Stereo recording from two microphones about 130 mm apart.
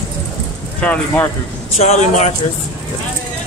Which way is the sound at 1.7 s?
60° left (ahead or behind).